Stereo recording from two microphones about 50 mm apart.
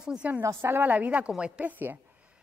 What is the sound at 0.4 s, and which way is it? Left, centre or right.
Speech, right.